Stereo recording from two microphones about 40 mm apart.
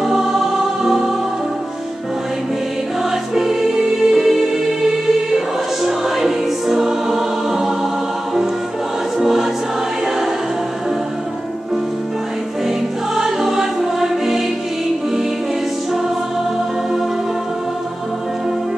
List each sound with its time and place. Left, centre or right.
0.0 s music: centre
3.3 s music: centre
9.2 s music: centre
13.1 s music: centre